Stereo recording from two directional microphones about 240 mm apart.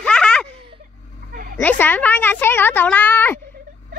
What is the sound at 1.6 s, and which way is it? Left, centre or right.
Speech, centre.